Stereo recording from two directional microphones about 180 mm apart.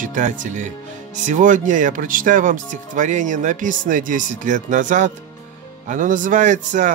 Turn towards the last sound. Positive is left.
turn(degrees=-45)  # may be behind; listen again after turning